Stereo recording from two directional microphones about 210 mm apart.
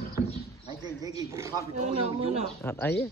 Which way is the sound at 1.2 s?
15° right (ahead or behind).